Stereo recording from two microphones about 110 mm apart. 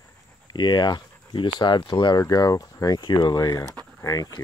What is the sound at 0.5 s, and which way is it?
Speech, 40° left (ahead or behind).